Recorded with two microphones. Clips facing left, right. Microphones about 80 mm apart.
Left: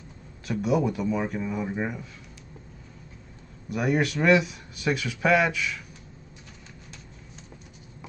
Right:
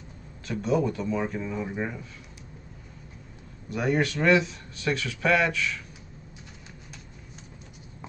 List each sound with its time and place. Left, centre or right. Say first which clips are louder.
0.5 s speech: left 1 dB; centre
3.7 s speech: left 1 dB; centre